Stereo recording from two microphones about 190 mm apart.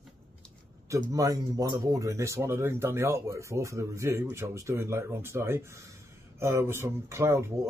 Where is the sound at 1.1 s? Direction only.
20° right (ahead or behind).